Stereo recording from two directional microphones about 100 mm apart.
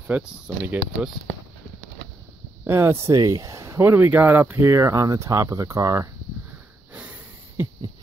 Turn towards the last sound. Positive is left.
turn(degrees=-15)  # may be behind; listen again after turning